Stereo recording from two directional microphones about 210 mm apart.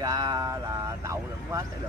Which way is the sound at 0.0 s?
15° right (ahead or behind).